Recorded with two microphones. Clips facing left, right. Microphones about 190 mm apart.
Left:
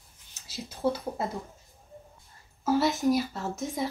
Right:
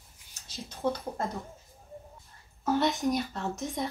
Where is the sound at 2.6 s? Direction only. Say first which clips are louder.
Left 3 dB; centre (ahead or behind).